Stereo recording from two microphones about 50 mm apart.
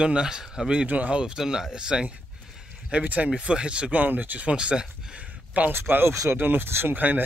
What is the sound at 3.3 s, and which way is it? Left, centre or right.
Speech, centre.